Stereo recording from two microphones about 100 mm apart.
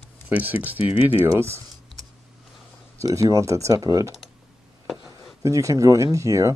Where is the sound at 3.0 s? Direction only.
35° right (ahead or behind).